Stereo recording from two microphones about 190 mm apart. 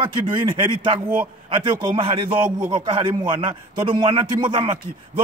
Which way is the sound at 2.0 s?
30° right (ahead or behind).